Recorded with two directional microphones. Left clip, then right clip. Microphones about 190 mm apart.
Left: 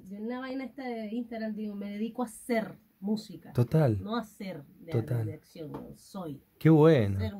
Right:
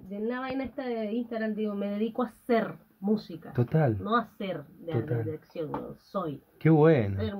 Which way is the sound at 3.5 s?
40° left (ahead or behind).